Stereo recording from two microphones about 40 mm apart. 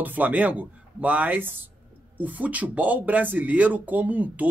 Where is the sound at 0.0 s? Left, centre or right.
Right.